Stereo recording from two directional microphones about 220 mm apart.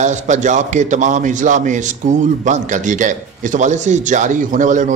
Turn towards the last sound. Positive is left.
turn(degrees=-35)  # may be behind; listen again after turning